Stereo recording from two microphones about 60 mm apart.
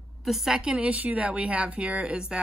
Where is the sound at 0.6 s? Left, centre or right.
Centre.